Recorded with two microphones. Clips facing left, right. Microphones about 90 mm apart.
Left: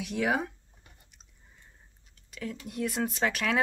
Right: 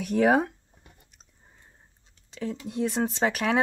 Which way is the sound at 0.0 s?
40° right (ahead or behind).